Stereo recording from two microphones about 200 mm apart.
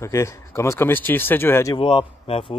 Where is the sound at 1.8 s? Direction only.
25° left (ahead or behind).